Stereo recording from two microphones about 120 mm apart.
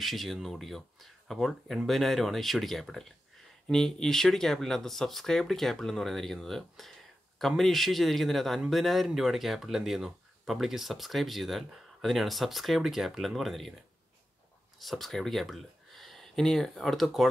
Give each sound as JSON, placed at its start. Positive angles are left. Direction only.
{"t": 0.0, "sound": "a man's voice", "side_deg": 0}
{"t": 14.8, "sound": "speech", "side_deg": 0}